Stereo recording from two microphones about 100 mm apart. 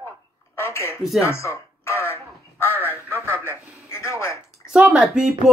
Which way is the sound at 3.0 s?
25° right (ahead or behind).